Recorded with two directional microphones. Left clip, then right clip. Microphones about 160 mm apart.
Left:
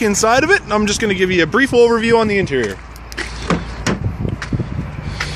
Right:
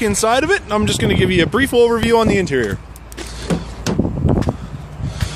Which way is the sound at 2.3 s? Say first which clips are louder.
Even; 25° right (ahead or behind).